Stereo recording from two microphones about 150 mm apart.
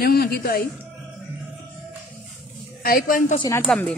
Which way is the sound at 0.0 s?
90° left.